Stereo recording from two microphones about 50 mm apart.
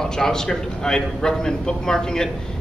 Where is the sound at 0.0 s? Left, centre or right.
Centre.